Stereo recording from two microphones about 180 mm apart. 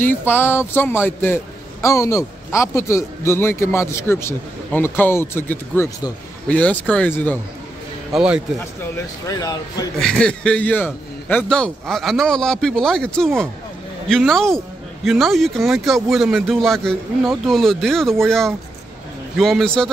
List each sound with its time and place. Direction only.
0.0 s a man's voice: 10° left (ahead or behind)
8.1 s a man's voice: 5° right (ahead or behind)
8.9 s speech: 20° left (ahead or behind)
9.9 s a man's voice: 5° left (ahead or behind)
19.3 s a man's voice: centre (ahead or behind)